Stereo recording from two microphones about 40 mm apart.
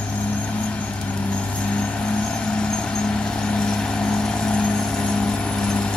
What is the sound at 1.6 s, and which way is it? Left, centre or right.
Vehicle, left.